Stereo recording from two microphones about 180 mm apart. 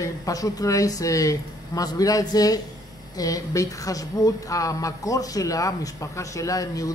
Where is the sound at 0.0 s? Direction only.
20° left (ahead or behind).